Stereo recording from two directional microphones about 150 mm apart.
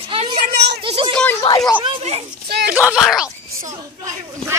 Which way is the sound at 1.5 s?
40° left (ahead or behind).